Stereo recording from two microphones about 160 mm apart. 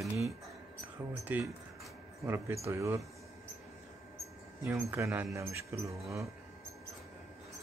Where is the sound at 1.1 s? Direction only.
10° right (ahead or behind).